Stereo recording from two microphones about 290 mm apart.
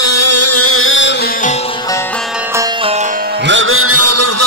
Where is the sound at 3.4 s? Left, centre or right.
Right.